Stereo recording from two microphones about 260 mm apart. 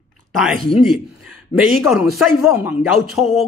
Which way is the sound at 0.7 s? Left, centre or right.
Centre.